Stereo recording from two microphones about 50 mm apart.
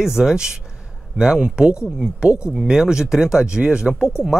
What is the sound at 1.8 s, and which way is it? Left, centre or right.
Speech, centre.